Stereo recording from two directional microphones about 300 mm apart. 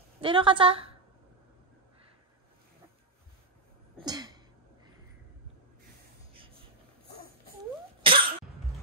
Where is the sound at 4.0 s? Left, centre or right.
Centre.